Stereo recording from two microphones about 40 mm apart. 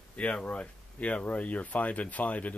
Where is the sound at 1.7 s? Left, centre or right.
Left.